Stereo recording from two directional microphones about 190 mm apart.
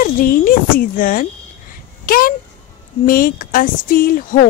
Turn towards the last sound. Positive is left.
turn(degrees=50)  # may be behind; listen again after turning